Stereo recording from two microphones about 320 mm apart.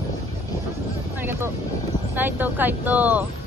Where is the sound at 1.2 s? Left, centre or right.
Centre.